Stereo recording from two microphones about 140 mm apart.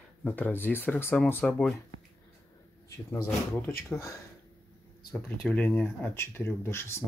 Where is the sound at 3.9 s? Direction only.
25° left (ahead or behind).